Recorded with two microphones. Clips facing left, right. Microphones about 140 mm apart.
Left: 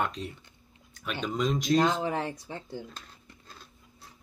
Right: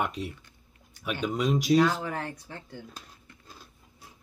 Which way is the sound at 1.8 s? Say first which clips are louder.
Even; 20° left (ahead or behind).